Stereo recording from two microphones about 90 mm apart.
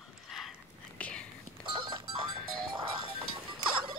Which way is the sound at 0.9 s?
15° left (ahead or behind).